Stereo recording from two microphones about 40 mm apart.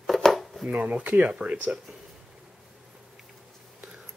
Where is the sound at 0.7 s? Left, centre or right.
Right.